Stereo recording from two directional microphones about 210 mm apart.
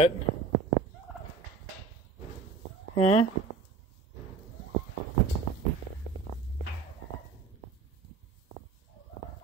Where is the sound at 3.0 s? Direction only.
30° left (ahead or behind).